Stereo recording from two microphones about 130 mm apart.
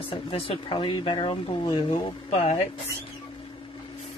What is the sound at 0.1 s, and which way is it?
Speech, 45° left (ahead or behind).